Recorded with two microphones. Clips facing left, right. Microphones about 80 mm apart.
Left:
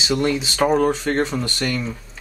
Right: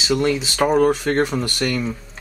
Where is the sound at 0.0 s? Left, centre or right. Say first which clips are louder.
Right 1 dB; centre.